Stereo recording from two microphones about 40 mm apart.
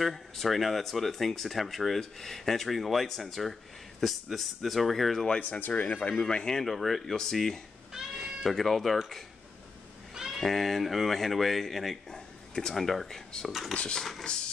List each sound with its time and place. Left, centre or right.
0.0 s speech: centre
5.7 s speech: left
6.6 s speech: centre
7.9 s cat: centre
8.5 s speech: centre
10.1 s cat: centre
10.4 s speech: centre
12.1 s speech: centre
13.5 s speech: centre
13.7 s a sound: left